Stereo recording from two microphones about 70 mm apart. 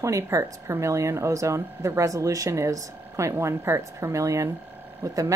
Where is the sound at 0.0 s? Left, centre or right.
Right.